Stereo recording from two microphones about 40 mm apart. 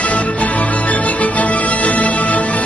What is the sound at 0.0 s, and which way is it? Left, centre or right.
Music, left.